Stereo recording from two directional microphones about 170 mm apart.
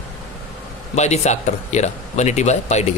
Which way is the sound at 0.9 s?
40° left (ahead or behind).